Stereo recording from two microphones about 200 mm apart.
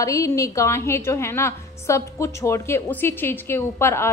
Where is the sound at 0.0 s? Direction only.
15° left (ahead or behind).